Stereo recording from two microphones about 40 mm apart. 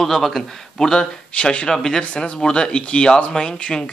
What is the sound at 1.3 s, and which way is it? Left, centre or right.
Speech, left.